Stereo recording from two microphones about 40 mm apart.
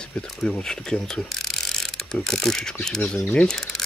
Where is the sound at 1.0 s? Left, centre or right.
Centre.